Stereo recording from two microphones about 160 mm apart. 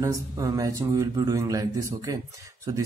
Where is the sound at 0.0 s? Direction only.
20° right (ahead or behind).